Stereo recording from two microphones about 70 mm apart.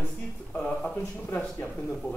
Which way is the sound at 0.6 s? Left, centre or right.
Centre.